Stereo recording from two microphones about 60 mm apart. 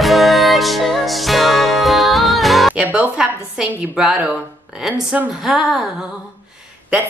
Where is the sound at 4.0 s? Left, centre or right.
Centre.